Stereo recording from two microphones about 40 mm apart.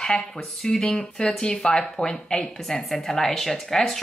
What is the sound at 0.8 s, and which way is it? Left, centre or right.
Speech, centre.